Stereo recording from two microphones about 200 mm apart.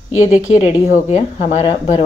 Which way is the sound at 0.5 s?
35° left (ahead or behind).